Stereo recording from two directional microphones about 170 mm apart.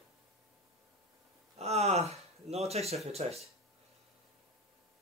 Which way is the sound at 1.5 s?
40° right (ahead or behind).